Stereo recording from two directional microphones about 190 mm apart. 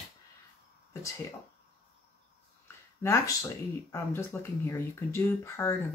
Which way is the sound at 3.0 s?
15° left (ahead or behind).